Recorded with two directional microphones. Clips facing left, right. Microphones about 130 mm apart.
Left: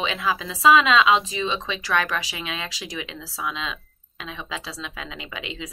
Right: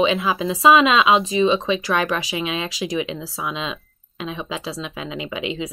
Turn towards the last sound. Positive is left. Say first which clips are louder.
# right 8 dB
turn(degrees=-20)  # may be behind; listen again after turning